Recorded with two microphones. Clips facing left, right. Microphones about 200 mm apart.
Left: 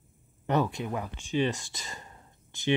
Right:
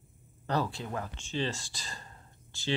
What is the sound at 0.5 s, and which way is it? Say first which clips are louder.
Speech: left 4 dB; 20° left (ahead or behind).